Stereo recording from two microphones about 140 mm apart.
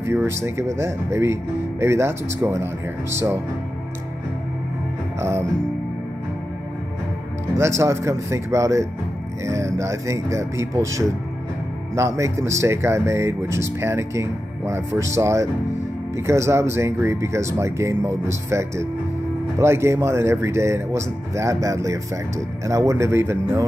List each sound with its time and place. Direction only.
0.0 s speech: 20° right (ahead or behind)
7.5 s speech: 20° right (ahead or behind)